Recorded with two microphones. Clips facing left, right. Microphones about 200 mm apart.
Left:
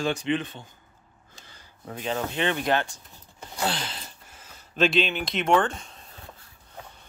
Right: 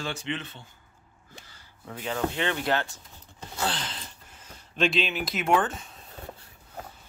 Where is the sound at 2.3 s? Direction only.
20° left (ahead or behind).